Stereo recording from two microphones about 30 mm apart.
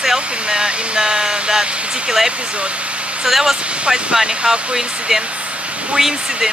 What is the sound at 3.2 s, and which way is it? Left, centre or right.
Speech, centre.